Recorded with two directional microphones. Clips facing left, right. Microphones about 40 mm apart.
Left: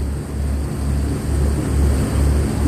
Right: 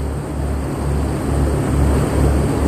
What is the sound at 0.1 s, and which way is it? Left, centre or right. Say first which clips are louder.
Vehicle: right 4 dB; right.